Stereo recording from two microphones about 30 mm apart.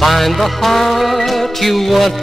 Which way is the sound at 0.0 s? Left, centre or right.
Centre.